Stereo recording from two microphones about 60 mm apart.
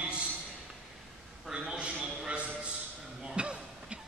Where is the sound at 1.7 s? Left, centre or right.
Centre.